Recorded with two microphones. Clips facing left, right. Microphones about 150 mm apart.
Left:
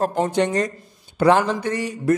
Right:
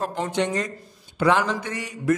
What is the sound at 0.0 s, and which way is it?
Speech, 45° left (ahead or behind).